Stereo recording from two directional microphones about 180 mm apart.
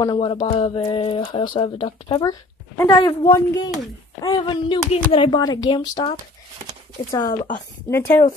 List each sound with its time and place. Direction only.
0.0 s speech: 25° left (ahead or behind)
7.9 s speech: 10° left (ahead or behind)